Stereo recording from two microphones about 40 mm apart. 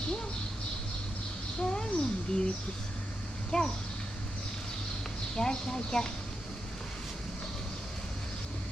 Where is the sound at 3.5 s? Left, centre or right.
Centre.